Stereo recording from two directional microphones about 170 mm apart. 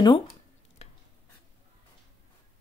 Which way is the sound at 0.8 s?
40° left (ahead or behind).